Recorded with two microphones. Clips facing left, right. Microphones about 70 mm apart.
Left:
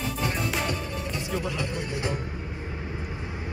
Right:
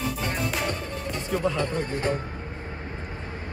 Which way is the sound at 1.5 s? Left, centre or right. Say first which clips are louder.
Right 4 dB; right.